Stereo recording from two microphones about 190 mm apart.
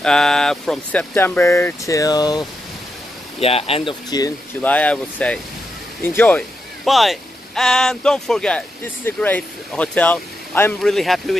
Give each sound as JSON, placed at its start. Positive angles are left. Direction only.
{"t": 0.0, "sound": "speech", "side_deg": 5}
{"t": 3.3, "sound": "speech", "side_deg": 30}
{"t": 4.6, "sound": "speech", "side_deg": 10}